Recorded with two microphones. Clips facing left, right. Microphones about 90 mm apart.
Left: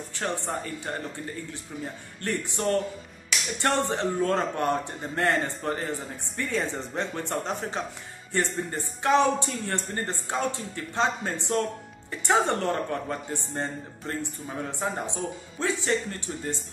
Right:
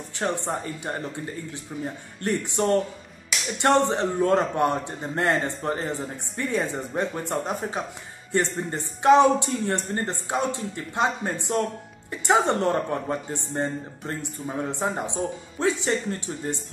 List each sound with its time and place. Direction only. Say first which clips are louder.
0.2 s speech: right 3 dB; 20° right (ahead or behind)